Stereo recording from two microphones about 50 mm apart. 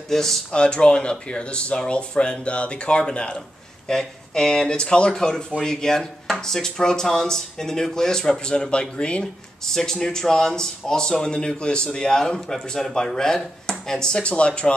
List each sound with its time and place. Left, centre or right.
0.1 s speech: centre
0.5 s speech: centre